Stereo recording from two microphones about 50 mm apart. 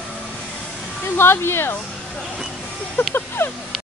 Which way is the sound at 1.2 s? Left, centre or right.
Left.